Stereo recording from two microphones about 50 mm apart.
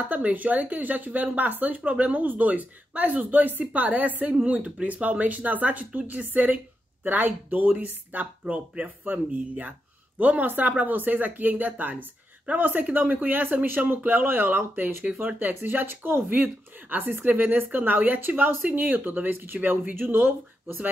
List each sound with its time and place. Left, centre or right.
0.1 s a woman's voice: right